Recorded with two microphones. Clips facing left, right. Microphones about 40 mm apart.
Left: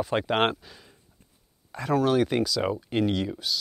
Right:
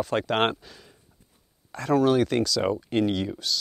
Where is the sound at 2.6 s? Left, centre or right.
Centre.